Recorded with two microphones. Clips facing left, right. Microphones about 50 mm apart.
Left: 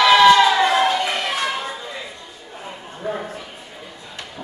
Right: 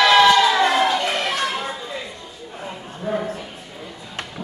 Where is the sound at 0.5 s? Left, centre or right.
Centre.